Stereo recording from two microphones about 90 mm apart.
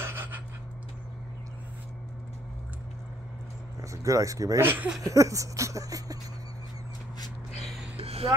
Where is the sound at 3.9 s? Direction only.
40° right (ahead or behind).